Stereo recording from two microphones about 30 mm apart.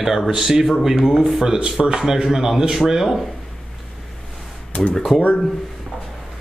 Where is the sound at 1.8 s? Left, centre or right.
Centre.